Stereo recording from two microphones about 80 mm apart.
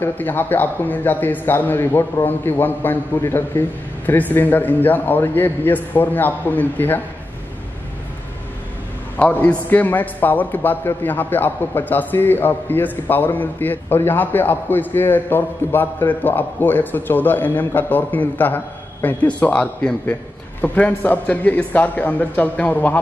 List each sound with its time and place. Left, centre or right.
0.0 s a man's voice: left
9.1 s a man's voice: centre